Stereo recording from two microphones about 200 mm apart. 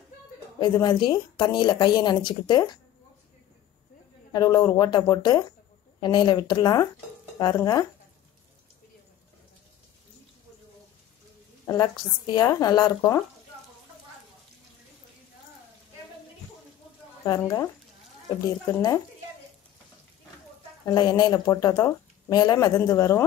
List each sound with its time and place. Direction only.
0.6 s speech: 25° left (ahead or behind)
4.3 s speech: 20° left (ahead or behind)
11.6 s speech: 20° left (ahead or behind)
17.3 s speech: 15° left (ahead or behind)
18.7 s speech: 15° left (ahead or behind)
20.8 s speech: 20° left (ahead or behind)